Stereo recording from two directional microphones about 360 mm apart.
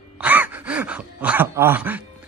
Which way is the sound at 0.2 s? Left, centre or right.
Centre.